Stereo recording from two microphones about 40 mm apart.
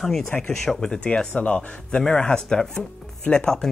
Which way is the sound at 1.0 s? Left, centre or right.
Left.